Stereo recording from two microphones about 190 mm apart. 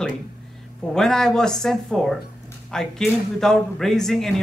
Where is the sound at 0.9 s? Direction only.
Centre (ahead or behind).